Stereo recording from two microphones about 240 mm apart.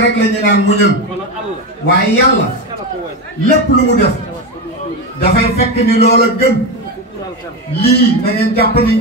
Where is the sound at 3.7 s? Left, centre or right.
Left.